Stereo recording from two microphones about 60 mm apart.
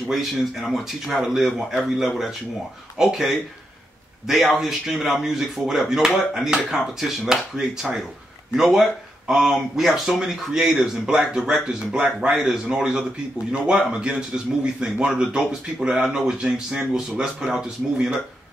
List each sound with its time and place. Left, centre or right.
0.1 s a man's voice: centre